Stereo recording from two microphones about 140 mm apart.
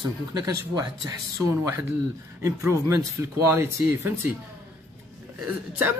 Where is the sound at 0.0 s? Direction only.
25° right (ahead or behind).